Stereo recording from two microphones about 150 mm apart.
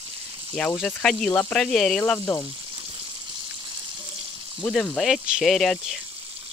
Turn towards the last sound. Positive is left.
turn(degrees=0)  # may be behind; listen again after turning